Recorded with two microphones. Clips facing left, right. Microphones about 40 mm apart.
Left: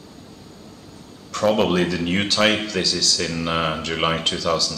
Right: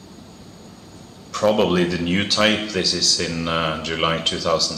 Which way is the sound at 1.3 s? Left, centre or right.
Centre.